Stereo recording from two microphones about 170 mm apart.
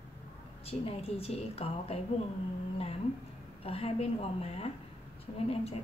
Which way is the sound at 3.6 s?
35° left (ahead or behind).